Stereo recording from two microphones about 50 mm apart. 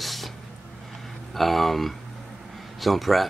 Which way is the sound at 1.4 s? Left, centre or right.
Centre.